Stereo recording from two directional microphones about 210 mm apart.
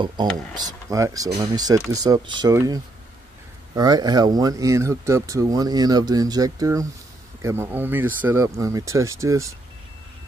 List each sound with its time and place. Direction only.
0.8 s speech: 15° right (ahead or behind)